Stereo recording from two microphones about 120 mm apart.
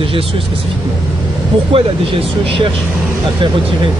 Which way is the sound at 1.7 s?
50° right (ahead or behind).